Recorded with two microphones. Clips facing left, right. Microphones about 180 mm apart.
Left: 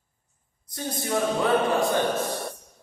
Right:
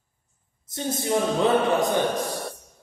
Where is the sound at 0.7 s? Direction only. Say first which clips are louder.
Right 4 dB; 25° right (ahead or behind).